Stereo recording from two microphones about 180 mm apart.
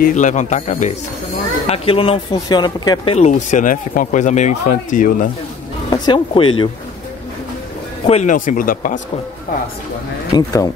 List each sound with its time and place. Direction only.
0.0 s speech: 45° left (ahead or behind); by 3.2 s 25° left (ahead or behind)
3.2 s speech: 40° left (ahead or behind)
5.9 s speech: 25° left (ahead or behind)
8.1 s speech: 45° left (ahead or behind)
10.3 s speech: 20° left (ahead or behind)